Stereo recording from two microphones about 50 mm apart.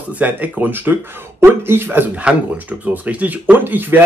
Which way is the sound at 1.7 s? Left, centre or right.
Right.